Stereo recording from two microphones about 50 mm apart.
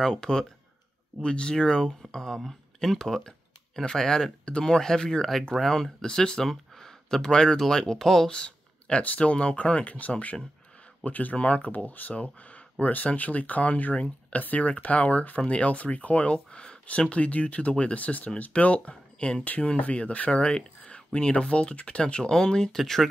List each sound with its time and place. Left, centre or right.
0.0 s speech: centre
8.3 s speech: left
11.7 s speech: left
12.2 s speech: left; by 23.0 s centre